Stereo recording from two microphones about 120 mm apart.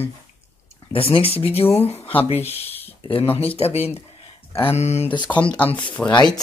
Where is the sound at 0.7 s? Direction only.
50° left (ahead or behind).